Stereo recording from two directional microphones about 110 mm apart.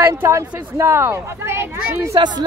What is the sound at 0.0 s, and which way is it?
Speech, 25° right (ahead or behind).